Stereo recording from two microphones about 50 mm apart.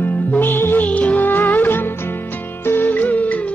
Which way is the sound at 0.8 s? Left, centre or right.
Left.